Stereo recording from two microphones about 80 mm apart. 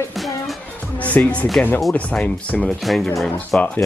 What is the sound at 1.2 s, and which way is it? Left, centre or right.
Speech, left.